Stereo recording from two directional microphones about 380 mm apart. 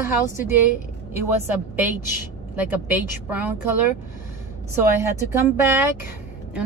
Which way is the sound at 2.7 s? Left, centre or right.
Centre.